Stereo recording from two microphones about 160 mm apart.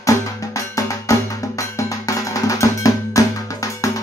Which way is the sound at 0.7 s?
20° left (ahead or behind).